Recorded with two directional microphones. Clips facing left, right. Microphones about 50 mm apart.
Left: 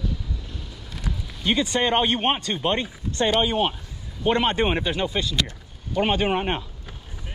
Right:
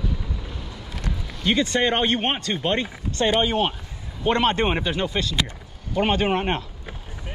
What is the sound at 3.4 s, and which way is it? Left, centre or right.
Speech, centre.